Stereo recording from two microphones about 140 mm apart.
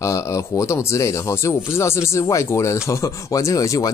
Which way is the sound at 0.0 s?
20° left (ahead or behind).